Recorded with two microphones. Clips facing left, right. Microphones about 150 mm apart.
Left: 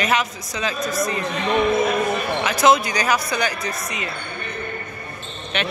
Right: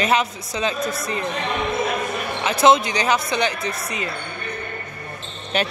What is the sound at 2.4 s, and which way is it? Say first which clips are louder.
Speech: right 2 dB; 25° right (ahead or behind).